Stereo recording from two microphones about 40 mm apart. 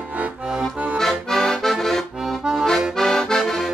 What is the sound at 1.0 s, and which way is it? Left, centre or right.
Accordion, centre.